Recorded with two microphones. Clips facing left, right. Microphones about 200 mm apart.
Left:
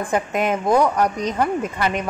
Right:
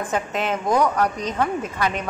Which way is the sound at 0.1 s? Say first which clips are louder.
Left 5 dB; 10° left (ahead or behind).